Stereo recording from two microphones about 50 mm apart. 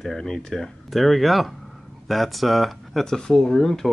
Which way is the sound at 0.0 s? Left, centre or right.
Centre.